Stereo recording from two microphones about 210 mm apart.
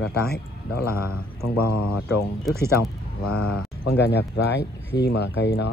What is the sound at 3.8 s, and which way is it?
Speech, 55° left (ahead or behind).